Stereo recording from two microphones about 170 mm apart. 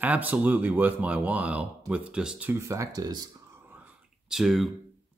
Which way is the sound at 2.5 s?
15° right (ahead or behind).